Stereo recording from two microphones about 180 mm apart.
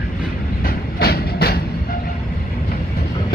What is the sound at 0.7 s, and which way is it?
Vehicle, 60° left (ahead or behind).